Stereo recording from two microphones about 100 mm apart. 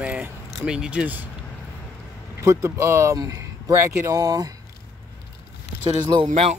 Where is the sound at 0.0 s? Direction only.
15° right (ahead or behind).